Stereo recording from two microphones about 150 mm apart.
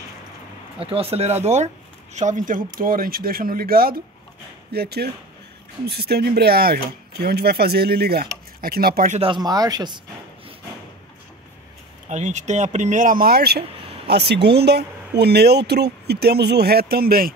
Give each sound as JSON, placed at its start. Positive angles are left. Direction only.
{"t": 0.7, "sound": "speech", "side_deg": -40}
{"t": 9.1, "sound": "speech", "side_deg": -40}
{"t": 9.4, "sound": "speech", "side_deg": -25}
{"t": 12.1, "sound": "speech", "side_deg": -50}